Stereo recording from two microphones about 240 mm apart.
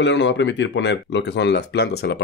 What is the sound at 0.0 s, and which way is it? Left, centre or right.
Speech, left.